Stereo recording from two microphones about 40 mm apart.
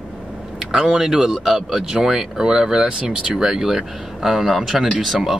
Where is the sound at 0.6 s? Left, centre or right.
Centre.